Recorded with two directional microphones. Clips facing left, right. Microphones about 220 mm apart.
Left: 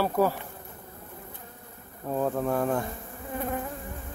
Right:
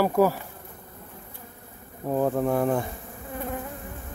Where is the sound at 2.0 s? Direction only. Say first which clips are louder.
Right 4 dB; 15° right (ahead or behind).